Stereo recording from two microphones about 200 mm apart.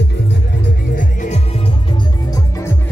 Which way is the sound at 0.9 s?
40° left (ahead or behind).